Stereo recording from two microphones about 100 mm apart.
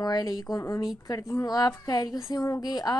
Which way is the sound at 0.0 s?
40° left (ahead or behind).